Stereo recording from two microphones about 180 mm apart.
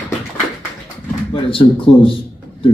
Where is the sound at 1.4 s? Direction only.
30° left (ahead or behind).